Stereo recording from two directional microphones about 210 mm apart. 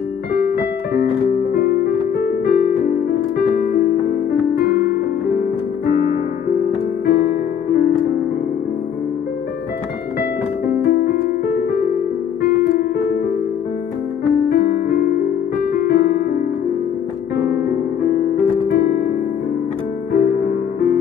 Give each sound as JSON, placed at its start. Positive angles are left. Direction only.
{"t": 0.3, "sound": "piano", "side_deg": 50}
{"t": 7.1, "sound": "music", "side_deg": 50}
{"t": 10.7, "sound": "music", "side_deg": 50}
{"t": 14.5, "sound": "piano", "side_deg": 50}
{"t": 15.8, "sound": "keyboard", "side_deg": 50}
{"t": 17.4, "sound": "piano", "side_deg": 50}
{"t": 20.1, "sound": "music", "side_deg": 50}